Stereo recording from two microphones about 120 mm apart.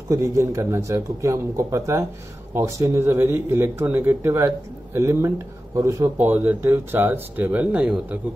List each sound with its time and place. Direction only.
0.1 s a man's voice: 25° right (ahead or behind)